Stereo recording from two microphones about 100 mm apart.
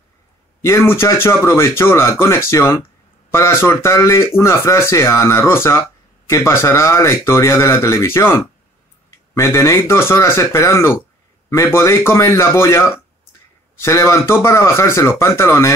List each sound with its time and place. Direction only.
0.7 s speech: 25° left (ahead or behind)